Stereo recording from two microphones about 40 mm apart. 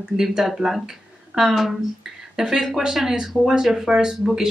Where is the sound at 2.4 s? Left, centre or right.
Centre.